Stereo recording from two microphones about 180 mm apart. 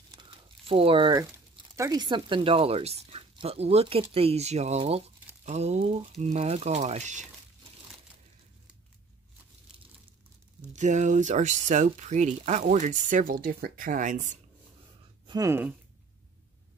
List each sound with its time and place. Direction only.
0.1 s crumpling: 25° right (ahead or behind)
1.8 s speech: 20° right (ahead or behind); by 7.2 s 40° right (ahead or behind)
10.7 s speech: 40° right (ahead or behind)
15.2 s speech: 20° right (ahead or behind)